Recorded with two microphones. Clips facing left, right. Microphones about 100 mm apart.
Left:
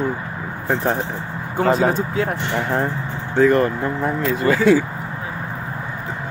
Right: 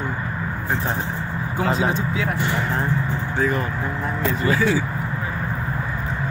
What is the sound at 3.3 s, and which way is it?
Speech, 75° left (ahead or behind).